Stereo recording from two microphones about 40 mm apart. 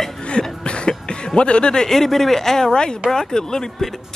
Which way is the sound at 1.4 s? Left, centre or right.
Left.